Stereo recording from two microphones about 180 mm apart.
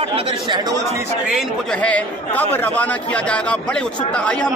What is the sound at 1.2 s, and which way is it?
A man's voice, centre (ahead or behind).